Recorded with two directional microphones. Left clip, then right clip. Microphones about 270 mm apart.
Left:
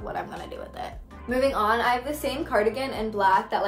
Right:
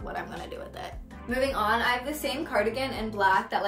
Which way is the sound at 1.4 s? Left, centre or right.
Centre.